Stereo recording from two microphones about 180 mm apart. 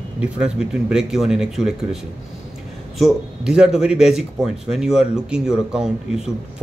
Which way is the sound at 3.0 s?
5° right (ahead or behind).